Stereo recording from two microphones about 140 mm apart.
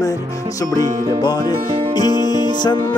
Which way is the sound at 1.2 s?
30° left (ahead or behind).